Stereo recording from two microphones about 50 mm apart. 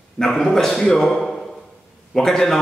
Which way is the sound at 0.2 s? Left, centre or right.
Centre.